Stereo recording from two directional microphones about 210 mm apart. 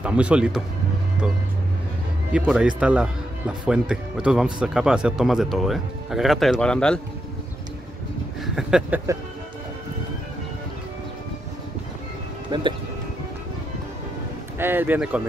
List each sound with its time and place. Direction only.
0.0 s speech: 5° right (ahead or behind)
2.3 s speech: 5° right (ahead or behind)
8.5 s speech: 5° right (ahead or behind)
12.4 s speech: 20° right (ahead or behind)
14.6 s speech: 10° right (ahead or behind)